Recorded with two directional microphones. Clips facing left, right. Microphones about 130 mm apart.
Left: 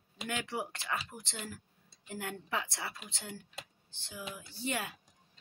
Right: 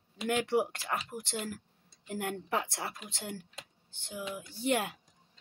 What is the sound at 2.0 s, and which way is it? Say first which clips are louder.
Speech: right 5 dB; 55° right (ahead or behind).